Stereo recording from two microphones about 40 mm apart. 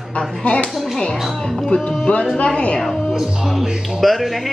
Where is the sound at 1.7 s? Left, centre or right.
Left.